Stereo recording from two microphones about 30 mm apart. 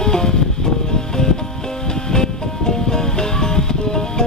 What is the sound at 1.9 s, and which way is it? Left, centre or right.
Music, left.